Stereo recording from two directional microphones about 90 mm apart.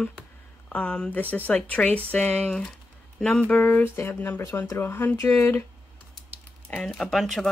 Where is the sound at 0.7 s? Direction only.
10° left (ahead or behind); by 5.6 s 30° left (ahead or behind).